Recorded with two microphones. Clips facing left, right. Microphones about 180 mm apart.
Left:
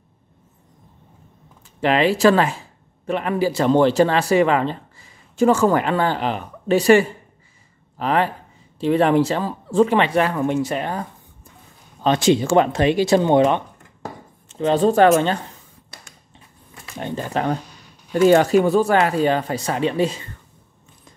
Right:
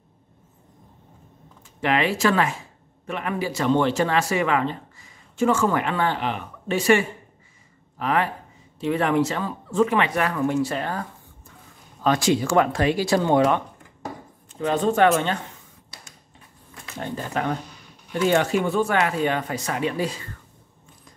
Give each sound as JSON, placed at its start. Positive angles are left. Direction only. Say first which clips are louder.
{"t": 1.8, "sound": "speech", "louder": "left 5 dB", "side_deg": 35}
{"t": 16.9, "sound": "speech", "louder": "left 3 dB", "side_deg": 20}